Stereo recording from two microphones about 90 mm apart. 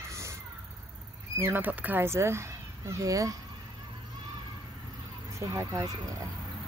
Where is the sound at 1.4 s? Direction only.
20° right (ahead or behind); by 3.3 s 40° right (ahead or behind).